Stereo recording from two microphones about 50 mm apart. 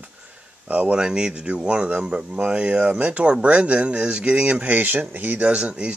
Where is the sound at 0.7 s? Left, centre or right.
Right.